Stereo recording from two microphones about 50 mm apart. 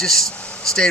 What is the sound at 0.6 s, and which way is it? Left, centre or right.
Speech, centre.